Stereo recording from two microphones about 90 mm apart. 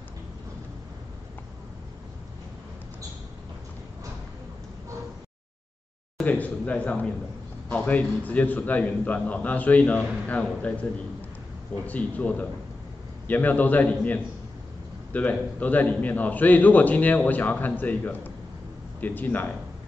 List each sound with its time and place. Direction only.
6.2 s a man's voice: 15° left (ahead or behind)